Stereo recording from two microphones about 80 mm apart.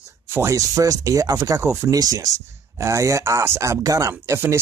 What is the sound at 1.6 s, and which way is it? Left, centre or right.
Speech, right.